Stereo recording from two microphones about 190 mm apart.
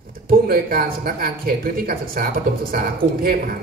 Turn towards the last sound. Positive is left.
turn(degrees=-50)  # may be behind; listen again after turning